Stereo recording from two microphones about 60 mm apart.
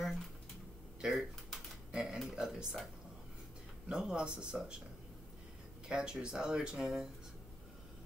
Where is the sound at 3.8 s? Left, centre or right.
Centre.